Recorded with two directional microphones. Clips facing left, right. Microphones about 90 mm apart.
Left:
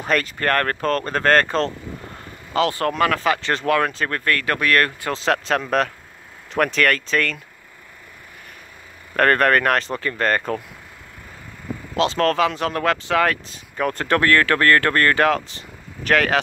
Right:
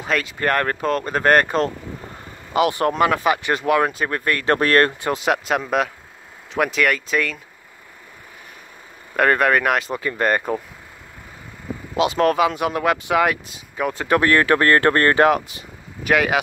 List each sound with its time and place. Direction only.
0.0 s speech: centre (ahead or behind)
0.4 s speech: 15° right (ahead or behind)
4.6 s speech: 30° right (ahead or behind)
5.1 s speech: 15° right (ahead or behind)
9.1 s speech: 10° right (ahead or behind)
11.9 s speech: 15° right (ahead or behind)
16.0 s speech: 10° right (ahead or behind)